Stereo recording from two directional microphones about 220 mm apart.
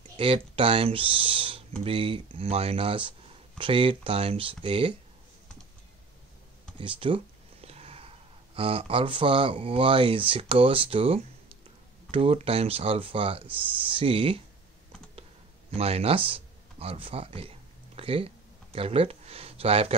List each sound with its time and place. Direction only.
0.2 s speech: 25° right (ahead or behind)
6.8 s speech: 25° right (ahead or behind)
7.6 s sniff: 25° right (ahead or behind)
8.5 s speech: 25° right (ahead or behind)
15.7 s speech: 25° right (ahead or behind)
16.3 s a sound: 25° right (ahead or behind)